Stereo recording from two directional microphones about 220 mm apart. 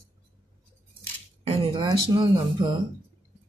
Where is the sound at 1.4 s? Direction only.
25° right (ahead or behind).